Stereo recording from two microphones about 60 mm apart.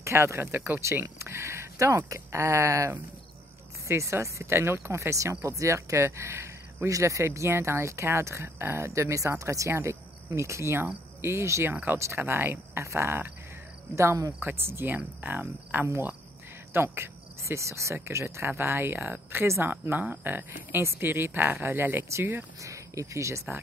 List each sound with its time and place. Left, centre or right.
0.0 s speech: right
0.4 s speech: right
1.2 s speech: right
6.9 s speech: right
13.9 s speech: right
14.4 s speech: right
15.0 s speech: right
16.7 s speech: right
22.6 s speech: right